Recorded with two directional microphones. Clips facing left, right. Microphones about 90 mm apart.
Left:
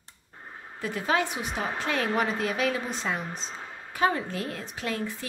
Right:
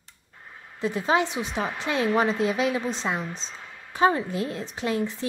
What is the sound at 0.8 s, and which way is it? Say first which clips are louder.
A woman's voice: right 3 dB; 25° right (ahead or behind).